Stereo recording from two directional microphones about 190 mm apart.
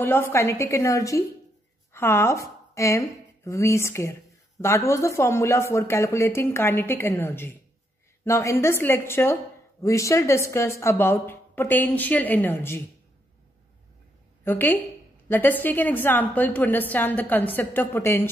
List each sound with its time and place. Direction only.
0.0 s a woman's voice: 10° left (ahead or behind)
14.4 s a woman's voice: 10° left (ahead or behind)